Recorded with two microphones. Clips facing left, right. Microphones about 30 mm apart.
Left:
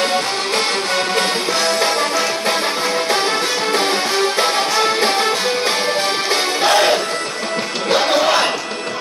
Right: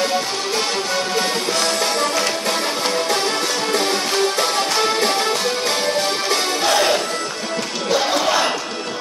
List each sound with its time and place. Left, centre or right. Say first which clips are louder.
1.5 s music: left 3 dB; left
4.4 s music: left 2 dB; left
7.9 s music: left 3 dB; left